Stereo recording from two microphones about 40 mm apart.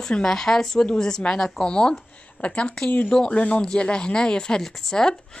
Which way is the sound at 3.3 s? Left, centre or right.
Left.